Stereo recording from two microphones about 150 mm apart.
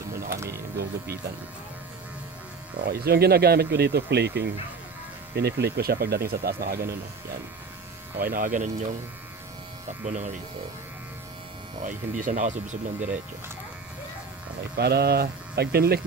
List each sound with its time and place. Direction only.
0.3 s a sound: 20° right (ahead or behind)
0.7 s speech: 90° right
2.9 s speech: 90° right
8.2 s speech: 70° right (ahead or behind)
10.0 s speech: 55° right (ahead or behind)
11.8 s speech: 60° right (ahead or behind)
14.8 s speech: 90° right